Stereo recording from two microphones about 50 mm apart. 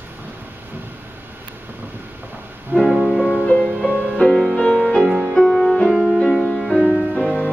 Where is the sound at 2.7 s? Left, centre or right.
Right.